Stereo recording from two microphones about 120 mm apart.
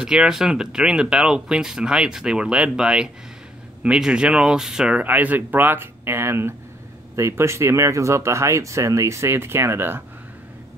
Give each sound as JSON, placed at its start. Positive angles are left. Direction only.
{"t": 0.0, "sound": "speech", "side_deg": -5}